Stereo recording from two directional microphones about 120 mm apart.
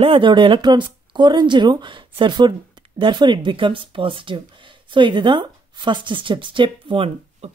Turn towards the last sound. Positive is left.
turn(degrees=-50)  # may be behind; listen again after turning